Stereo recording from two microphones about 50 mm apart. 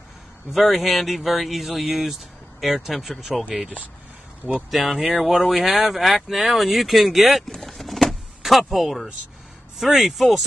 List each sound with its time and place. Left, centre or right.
0.5 s speech: centre
3.5 s speech: right
4.6 s speech: centre
7.5 s vehicle: centre
8.4 s speech: centre